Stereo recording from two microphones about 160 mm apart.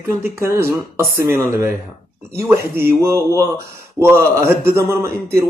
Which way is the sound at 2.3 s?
15° right (ahead or behind).